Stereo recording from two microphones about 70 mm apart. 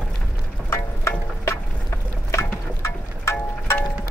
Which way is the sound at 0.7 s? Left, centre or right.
Left.